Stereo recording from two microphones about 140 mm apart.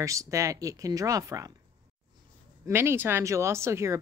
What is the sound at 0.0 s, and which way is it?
Speech, 20° right (ahead or behind).